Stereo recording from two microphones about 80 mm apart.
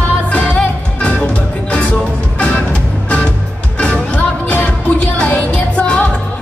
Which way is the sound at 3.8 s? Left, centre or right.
Centre.